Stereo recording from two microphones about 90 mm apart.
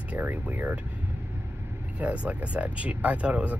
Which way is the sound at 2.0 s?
15° right (ahead or behind).